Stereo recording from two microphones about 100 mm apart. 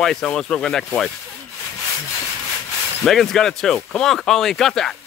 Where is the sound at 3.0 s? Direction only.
5° left (ahead or behind).